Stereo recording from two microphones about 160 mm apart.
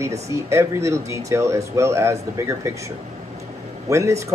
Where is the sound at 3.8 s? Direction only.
20° right (ahead or behind).